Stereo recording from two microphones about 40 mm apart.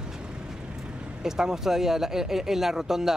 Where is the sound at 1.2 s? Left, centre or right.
Centre.